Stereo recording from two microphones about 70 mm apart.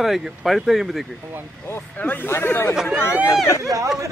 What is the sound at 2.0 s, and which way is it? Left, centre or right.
Speech, left.